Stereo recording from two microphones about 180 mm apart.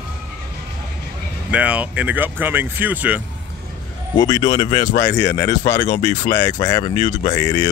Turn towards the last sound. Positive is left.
turn(degrees=15)  # may be behind; listen again after turning